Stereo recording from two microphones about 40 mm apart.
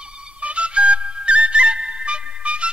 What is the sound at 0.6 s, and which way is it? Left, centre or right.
Music, right.